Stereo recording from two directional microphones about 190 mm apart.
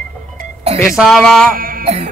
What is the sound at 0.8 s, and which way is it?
Speech, centre (ahead or behind).